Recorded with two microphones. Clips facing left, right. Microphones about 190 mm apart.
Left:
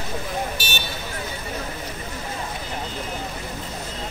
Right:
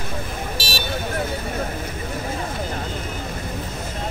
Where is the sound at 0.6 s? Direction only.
30° right (ahead or behind).